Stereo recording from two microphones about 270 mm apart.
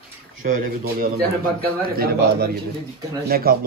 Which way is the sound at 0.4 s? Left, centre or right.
Right.